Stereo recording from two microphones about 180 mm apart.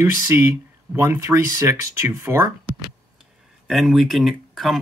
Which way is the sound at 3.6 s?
Centre (ahead or behind).